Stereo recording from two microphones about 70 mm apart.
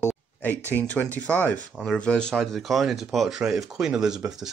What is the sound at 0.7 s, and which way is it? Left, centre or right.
Speech, left.